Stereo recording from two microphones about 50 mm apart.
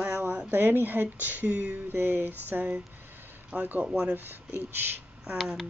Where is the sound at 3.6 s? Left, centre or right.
Right.